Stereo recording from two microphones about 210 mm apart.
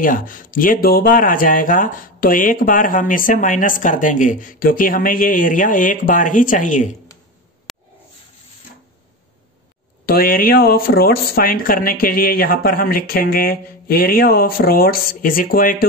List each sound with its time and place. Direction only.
0.0 s speech: 40° left (ahead or behind)
7.7 s a sound: centre (ahead or behind)
10.0 s speech: 45° left (ahead or behind)